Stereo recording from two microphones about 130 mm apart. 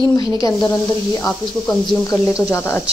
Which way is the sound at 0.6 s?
30° left (ahead or behind).